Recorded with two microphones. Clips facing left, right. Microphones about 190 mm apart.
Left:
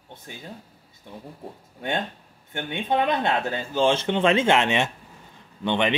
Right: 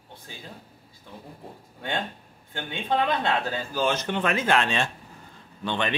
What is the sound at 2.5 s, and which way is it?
Speech, 20° left (ahead or behind).